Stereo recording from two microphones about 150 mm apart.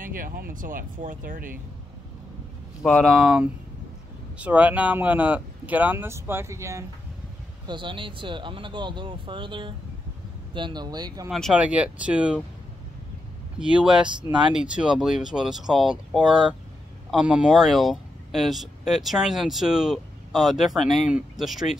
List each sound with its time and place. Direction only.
0.0 s speech: 70° right (ahead or behind)
2.8 s speech: centre (ahead or behind); by 6.8 s 20° right (ahead or behind)
7.6 s speech: 35° right (ahead or behind)
11.2 s speech: centre (ahead or behind)
11.5 s speech: 10° right (ahead or behind)
13.6 s speech: 5° right (ahead or behind)
14.0 s speech: 30° right (ahead or behind)
14.5 s speech: 5° right (ahead or behind)